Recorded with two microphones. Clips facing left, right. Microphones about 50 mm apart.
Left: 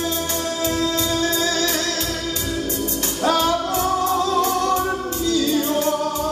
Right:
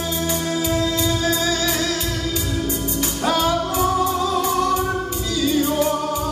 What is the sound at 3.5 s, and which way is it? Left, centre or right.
Music, centre.